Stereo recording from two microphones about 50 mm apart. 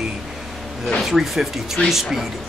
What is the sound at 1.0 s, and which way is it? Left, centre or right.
Speech, centre.